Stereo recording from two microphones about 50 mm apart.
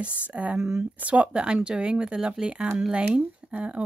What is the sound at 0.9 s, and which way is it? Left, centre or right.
Speech, right.